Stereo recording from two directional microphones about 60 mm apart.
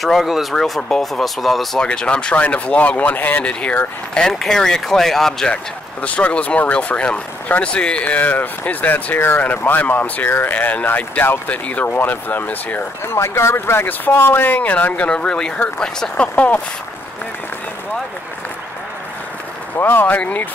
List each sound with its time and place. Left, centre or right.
0.0 s speech: centre
1.8 s speech: centre
4.3 s speech: centre
6.0 s speech: left
13.1 s speech: left
13.8 s speech: left
15.0 s speech: centre
16.3 s speech: left
19.8 s speech: left
20.2 s speech: left